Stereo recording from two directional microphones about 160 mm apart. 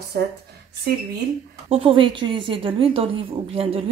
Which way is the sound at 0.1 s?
90° right.